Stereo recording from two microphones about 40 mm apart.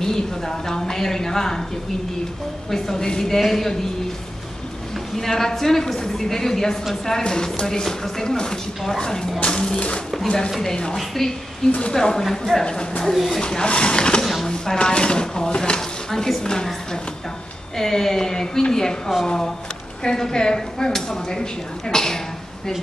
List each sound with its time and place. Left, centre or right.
0.0 s speech: centre
2.7 s speech: centre
5.1 s speech: centre
11.0 s speech: centre
12.3 s speech: centre
12.6 s speech: left
13.0 s speech: centre
13.4 s speech: left
14.2 s a sound: centre
14.8 s speech: left
16.1 s speech: centre
17.7 s speech: centre